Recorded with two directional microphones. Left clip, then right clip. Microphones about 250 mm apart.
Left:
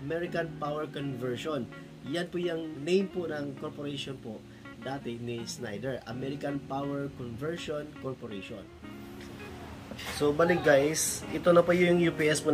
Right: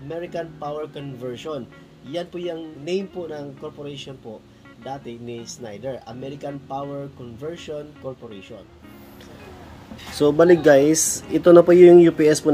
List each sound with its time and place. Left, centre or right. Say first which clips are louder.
0.1 s speech: right 3 dB; centre
10.4 s speech: right 10 dB; right